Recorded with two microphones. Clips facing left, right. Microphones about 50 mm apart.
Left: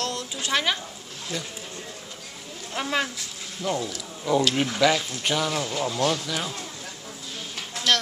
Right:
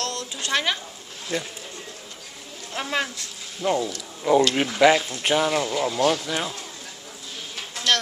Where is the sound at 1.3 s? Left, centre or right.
Right.